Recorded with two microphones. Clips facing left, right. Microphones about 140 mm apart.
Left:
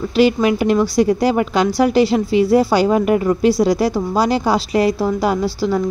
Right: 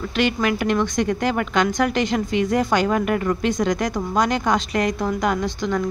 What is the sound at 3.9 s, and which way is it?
Speech, 35° left (ahead or behind).